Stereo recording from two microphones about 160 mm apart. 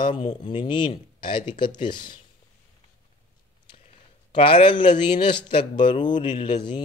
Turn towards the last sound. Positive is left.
turn(degrees=30)  # may be behind; listen again after turning